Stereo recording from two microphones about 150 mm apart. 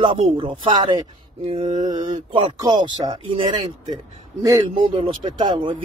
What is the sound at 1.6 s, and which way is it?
Mantra, 50° right (ahead or behind).